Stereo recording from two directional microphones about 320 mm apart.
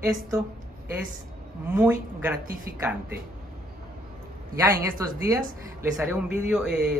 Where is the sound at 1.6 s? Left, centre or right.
Centre.